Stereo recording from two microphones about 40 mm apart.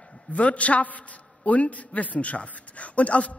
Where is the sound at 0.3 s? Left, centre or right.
Left.